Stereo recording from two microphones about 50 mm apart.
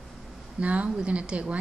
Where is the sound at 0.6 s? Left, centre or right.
Right.